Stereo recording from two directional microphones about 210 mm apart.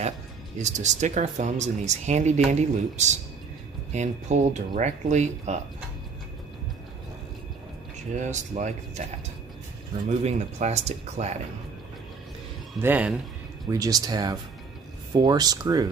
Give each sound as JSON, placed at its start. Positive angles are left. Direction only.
{"t": 0.6, "sound": "speech", "side_deg": -35}
{"t": 8.2, "sound": "speech", "side_deg": -35}
{"t": 10.0, "sound": "speech", "side_deg": -30}
{"t": 12.8, "sound": "speech", "side_deg": -10}